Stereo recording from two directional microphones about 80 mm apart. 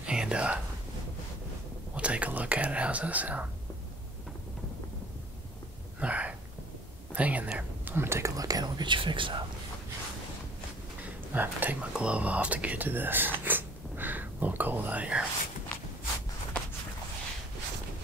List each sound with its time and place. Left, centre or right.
0.0 s whispering: centre
2.0 s whispering: centre
5.9 s a sound: centre
7.2 s speech: centre
8.4 s speech: right
11.3 s speech: right
11.9 s speech: centre